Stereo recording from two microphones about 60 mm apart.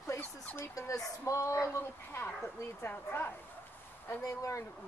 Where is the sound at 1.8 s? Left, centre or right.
Left.